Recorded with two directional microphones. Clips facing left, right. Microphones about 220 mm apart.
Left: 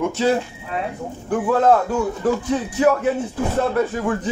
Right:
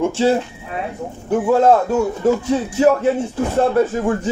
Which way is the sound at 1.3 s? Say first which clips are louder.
Right 4 dB; 25° right (ahead or behind).